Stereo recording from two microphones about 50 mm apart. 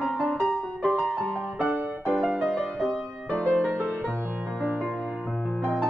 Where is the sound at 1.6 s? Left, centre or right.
Right.